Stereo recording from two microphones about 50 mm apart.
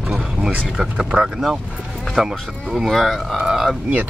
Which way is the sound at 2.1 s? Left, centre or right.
Centre.